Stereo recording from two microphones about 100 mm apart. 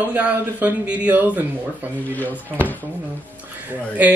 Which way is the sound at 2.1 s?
15° left (ahead or behind).